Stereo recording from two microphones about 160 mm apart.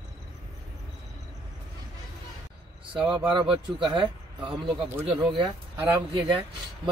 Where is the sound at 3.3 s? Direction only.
30° right (ahead or behind).